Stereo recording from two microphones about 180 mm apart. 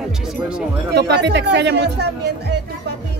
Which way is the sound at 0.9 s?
70° right (ahead or behind).